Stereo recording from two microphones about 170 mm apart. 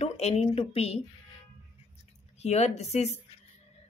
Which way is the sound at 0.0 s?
40° left (ahead or behind).